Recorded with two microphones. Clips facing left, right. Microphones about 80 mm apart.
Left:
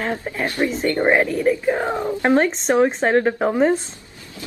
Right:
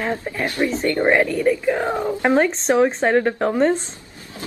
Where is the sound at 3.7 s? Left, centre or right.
Right.